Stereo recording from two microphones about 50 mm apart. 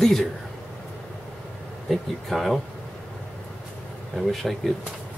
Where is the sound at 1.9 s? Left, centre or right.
Centre.